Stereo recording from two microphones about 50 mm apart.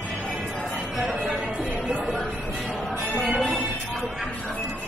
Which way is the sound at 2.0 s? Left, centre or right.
Centre.